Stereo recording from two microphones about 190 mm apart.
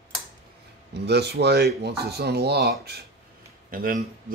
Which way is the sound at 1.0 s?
60° right (ahead or behind).